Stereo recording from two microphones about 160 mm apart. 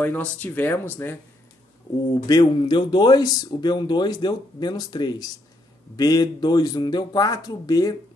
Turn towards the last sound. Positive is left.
turn(degrees=20)  # may be behind; listen again after turning